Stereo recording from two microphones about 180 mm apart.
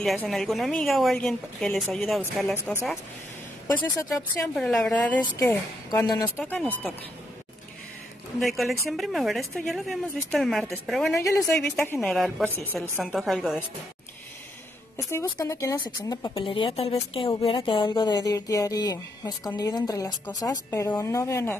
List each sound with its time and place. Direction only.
0.0 s a woman's voice: centre (ahead or behind)
4.1 s a woman's voice: centre (ahead or behind)
5.9 s a woman's voice: 20° left (ahead or behind)
8.4 s a woman's voice: centre (ahead or behind)
11.2 s a woman's voice: 20° left (ahead or behind); by 13.7 s centre (ahead or behind)
15.0 s a woman's voice: 15° left (ahead or behind)